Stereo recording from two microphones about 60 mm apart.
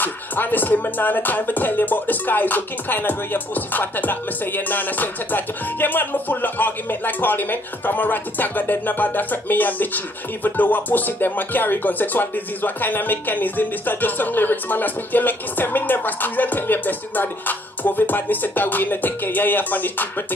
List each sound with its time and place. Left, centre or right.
0.0 s music: left